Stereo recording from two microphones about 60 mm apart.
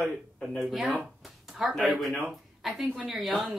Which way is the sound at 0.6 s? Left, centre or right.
Centre.